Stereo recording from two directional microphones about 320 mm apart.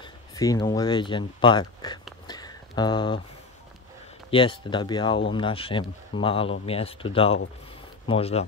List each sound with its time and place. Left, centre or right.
0.0 s speech: centre
2.2 s a sound: centre
4.3 s speech: centre